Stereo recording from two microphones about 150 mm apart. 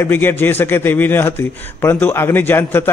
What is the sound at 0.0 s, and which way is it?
A man's voice, 15° left (ahead or behind).